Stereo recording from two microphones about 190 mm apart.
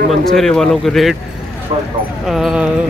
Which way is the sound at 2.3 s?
5° right (ahead or behind).